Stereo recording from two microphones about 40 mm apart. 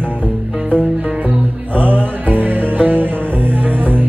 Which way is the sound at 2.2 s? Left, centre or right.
Right.